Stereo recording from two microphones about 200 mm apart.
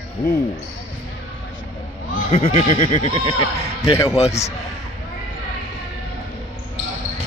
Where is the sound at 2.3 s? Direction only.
30° left (ahead or behind).